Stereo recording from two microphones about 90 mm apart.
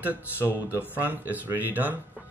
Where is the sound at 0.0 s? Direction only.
20° right (ahead or behind).